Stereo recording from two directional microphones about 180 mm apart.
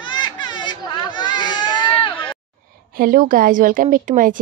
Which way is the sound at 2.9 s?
55° right (ahead or behind).